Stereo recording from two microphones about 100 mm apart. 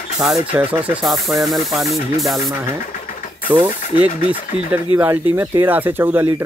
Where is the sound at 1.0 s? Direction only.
Centre (ahead or behind).